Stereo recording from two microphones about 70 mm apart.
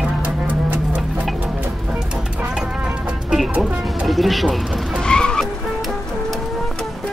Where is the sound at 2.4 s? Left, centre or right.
Centre.